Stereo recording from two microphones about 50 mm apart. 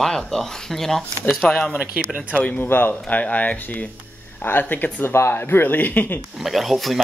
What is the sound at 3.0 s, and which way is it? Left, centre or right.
A man's voice, left.